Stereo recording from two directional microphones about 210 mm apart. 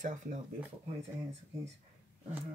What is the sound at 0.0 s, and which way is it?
Speech, 35° right (ahead or behind).